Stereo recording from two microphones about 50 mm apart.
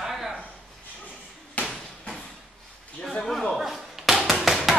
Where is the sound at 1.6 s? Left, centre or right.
Left.